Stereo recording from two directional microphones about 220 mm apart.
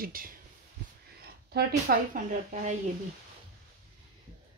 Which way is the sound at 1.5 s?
45° right (ahead or behind).